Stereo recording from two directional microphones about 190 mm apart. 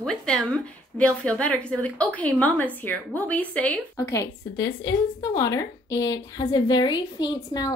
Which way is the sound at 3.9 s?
15° left (ahead or behind).